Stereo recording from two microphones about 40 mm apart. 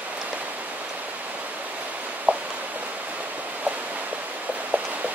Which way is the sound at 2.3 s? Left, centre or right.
Right.